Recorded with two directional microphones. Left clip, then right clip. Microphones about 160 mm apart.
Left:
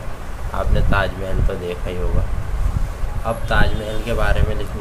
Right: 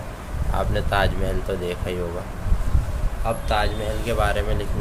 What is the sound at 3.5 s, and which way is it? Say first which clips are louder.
Speech: left 3 dB; 15° right (ahead or behind).